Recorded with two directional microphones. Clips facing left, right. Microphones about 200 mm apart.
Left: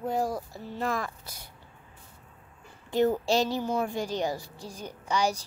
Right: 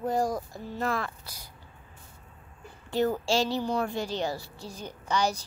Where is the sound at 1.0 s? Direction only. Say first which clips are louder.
Even; 20° left (ahead or behind).